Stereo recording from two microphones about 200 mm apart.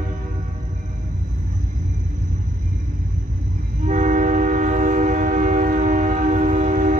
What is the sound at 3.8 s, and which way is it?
Train, 40° right (ahead or behind).